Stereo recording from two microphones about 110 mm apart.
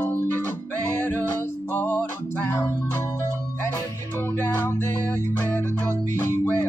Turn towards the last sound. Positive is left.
turn(degrees=20)  # may be behind; listen again after turning